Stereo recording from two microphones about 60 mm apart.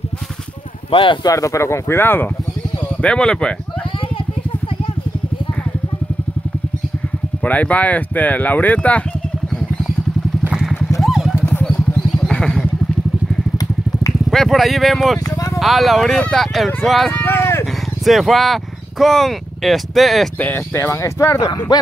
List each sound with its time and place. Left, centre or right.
1.2 s speech: left
3.0 s speech: centre
7.4 s speech: left
10.5 s vehicle: centre
12.3 s vehicle: centre
14.3 s speech: centre
17.1 s speech: left
18.0 s speech: centre
20.5 s speech: left